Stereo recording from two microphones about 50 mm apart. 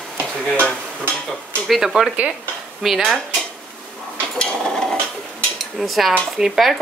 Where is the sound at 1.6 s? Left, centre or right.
Centre.